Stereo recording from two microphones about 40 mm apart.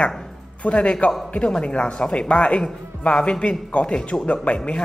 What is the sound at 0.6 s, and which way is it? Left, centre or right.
A man's voice, left.